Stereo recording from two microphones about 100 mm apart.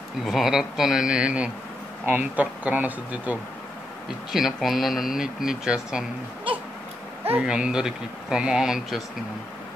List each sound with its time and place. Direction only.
0.2 s speech: centre (ahead or behind)
4.3 s speech: 5° right (ahead or behind)
7.3 s speech: 10° right (ahead or behind)